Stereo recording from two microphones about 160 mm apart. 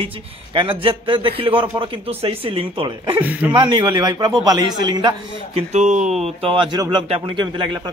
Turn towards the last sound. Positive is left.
turn(degrees=-30)  # may be behind; listen again after turning